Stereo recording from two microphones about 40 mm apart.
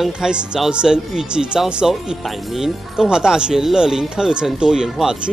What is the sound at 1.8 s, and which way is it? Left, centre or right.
Speech, centre.